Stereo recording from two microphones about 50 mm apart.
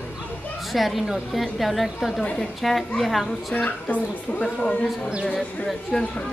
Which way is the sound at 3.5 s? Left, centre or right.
Left.